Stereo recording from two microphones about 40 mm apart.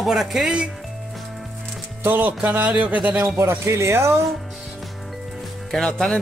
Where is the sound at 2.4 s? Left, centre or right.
Right.